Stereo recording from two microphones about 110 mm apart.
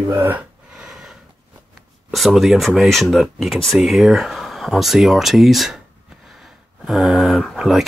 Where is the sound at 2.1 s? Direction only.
Centre (ahead or behind).